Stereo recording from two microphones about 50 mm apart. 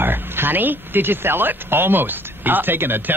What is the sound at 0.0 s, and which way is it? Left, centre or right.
Speech, right.